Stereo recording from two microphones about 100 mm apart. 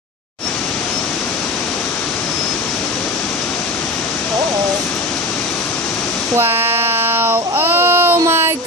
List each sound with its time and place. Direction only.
6.3 s child singing: 25° right (ahead or behind)
8.3 s music: 25° right (ahead or behind)